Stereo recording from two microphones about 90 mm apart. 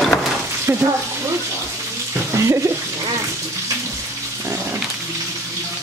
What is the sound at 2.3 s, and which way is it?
Stir, 35° right (ahead or behind).